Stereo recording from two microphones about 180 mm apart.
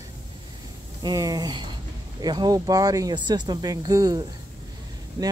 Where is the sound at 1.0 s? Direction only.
20° right (ahead or behind).